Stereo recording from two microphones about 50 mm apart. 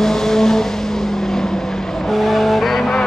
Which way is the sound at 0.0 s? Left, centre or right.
Centre.